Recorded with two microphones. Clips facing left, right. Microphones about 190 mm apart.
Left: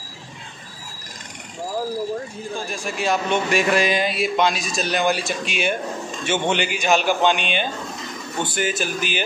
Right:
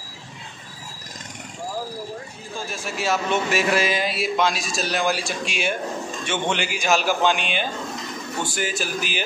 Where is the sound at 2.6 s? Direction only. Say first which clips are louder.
Left 1 dB; centre (ahead or behind).